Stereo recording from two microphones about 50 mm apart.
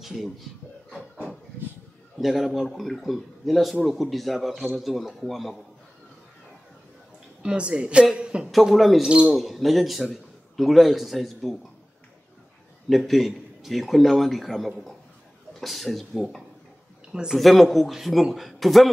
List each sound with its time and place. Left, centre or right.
0.0 s speech: centre
2.1 s a man's voice: centre
7.4 s speech: right
8.6 s a man's voice: centre
12.9 s a man's voice: centre
17.1 s speech: centre
17.4 s a man's voice: centre